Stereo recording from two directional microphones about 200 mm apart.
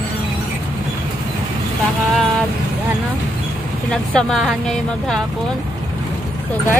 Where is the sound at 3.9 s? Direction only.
5° left (ahead or behind).